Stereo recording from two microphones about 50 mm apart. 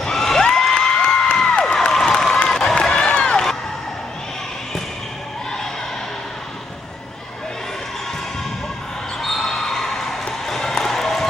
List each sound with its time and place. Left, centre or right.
0.0 s a sound: centre
2.3 s run: centre
9.2 s basketball bounce: centre
10.4 s music: centre